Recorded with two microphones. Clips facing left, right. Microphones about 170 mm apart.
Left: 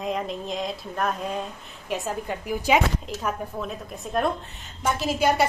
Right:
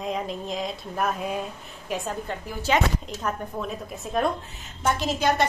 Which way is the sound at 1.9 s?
Centre (ahead or behind).